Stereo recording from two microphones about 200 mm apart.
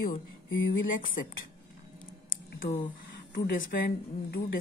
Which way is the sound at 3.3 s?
45° left (ahead or behind).